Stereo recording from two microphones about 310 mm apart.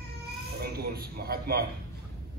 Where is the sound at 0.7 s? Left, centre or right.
Right.